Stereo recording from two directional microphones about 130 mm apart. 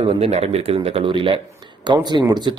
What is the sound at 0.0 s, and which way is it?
A man's voice, 55° right (ahead or behind).